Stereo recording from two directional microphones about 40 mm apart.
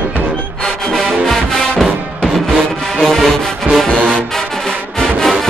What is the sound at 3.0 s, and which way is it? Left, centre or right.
Music, centre.